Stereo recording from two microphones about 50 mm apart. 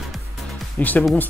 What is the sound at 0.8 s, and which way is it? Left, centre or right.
Speech, left.